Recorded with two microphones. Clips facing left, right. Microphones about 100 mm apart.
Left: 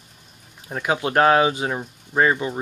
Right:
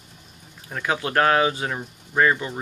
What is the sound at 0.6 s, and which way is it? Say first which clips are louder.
Speech: left 3 dB; 20° left (ahead or behind).